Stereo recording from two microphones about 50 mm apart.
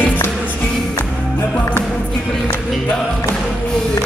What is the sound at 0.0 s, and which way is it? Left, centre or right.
Music, left.